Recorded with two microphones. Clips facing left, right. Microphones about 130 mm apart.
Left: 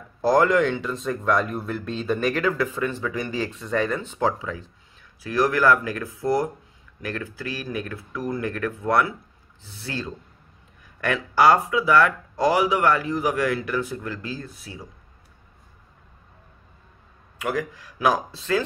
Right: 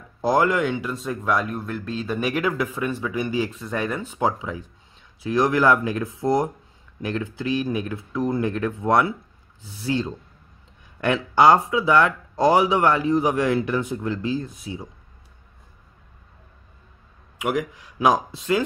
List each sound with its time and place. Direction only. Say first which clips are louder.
0.2 s speech: left 2 dB; 15° right (ahead or behind)
17.4 s speech: right 2 dB; 15° right (ahead or behind)